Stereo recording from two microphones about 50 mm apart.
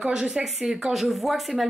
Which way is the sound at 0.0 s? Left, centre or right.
Centre.